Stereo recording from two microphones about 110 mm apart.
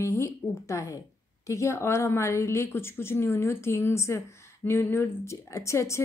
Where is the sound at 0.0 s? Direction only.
25° left (ahead or behind).